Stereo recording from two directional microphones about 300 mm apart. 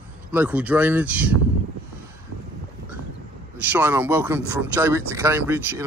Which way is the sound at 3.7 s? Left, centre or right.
Centre.